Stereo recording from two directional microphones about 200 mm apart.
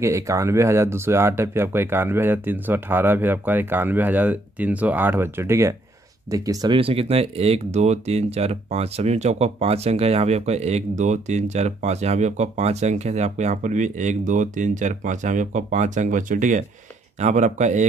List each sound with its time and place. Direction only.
0.0 s speech: 15° right (ahead or behind); by 17.8 s 35° right (ahead or behind)